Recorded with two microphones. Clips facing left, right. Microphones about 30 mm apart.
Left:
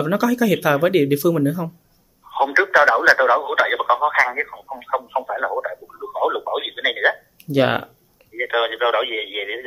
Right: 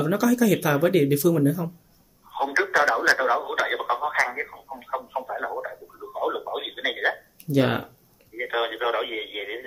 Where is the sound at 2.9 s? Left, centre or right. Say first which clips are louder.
Left 6 dB; centre.